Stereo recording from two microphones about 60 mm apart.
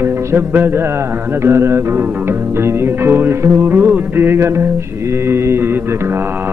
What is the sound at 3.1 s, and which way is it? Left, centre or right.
Music, right.